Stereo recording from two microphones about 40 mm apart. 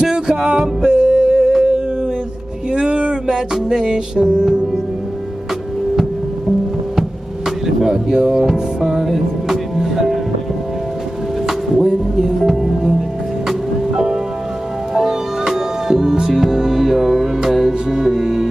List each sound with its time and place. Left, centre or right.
0.0 s music: centre
7.0 s music: centre
11.4 s music: centre